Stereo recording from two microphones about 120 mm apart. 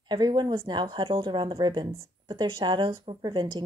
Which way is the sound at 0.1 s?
40° right (ahead or behind).